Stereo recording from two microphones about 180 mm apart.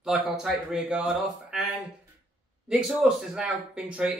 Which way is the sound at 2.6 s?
Centre (ahead or behind).